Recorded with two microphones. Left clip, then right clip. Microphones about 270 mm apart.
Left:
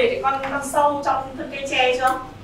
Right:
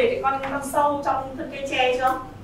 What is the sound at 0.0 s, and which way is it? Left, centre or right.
A woman's voice, centre.